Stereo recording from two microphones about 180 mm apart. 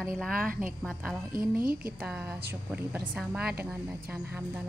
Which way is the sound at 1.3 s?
55° right (ahead or behind).